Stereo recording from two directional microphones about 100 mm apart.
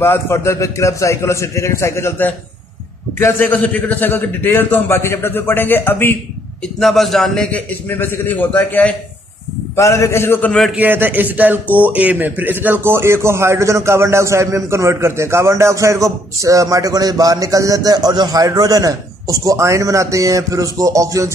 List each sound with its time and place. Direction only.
0.0 s a man's voice: 25° left (ahead or behind)
6.8 s a man's voice: centre (ahead or behind)
7.5 s a man's voice: 20° left (ahead or behind)
9.8 s a man's voice: 30° left (ahead or behind)
10.8 s speech: 20° right (ahead or behind); by 21.3 s 35° right (ahead or behind)